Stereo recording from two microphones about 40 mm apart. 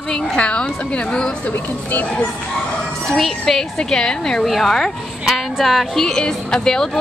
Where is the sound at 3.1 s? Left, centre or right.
Centre.